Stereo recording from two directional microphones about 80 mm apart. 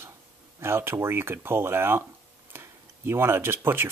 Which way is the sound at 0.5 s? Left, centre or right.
Right.